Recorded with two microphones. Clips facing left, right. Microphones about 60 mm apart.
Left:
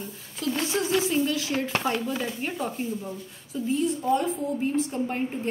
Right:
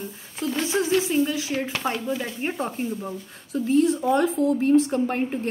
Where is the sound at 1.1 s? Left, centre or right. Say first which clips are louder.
Right 2 dB; centre.